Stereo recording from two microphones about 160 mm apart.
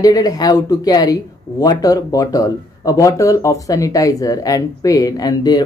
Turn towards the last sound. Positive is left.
turn(degrees=25)  # may be behind; listen again after turning